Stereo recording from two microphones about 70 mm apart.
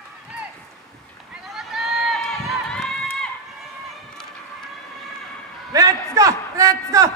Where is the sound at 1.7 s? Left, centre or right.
Centre.